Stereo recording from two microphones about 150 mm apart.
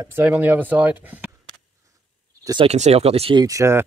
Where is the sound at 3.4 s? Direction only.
20° right (ahead or behind).